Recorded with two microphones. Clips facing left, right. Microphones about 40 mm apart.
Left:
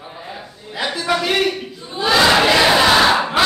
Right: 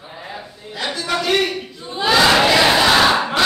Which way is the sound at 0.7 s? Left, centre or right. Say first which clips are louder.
Left 2 dB; centre.